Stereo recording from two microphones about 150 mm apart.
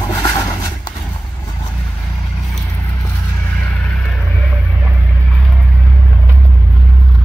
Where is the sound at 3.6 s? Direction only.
5° left (ahead or behind).